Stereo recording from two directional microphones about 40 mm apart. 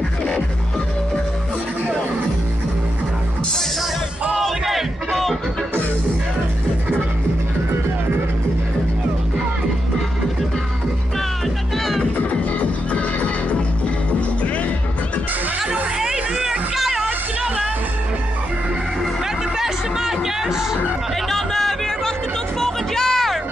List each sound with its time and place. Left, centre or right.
4.4 s music: centre
11.8 s music: centre
12.3 s music: left
15.6 s music: centre
19.5 s music: centre
21.3 s a sound: centre
22.6 s music: centre